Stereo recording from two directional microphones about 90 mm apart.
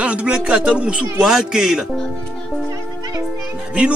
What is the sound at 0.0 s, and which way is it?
Speech, 15° right (ahead or behind).